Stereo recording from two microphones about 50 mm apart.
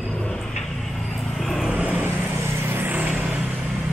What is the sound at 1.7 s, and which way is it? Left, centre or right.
Vehicle, right.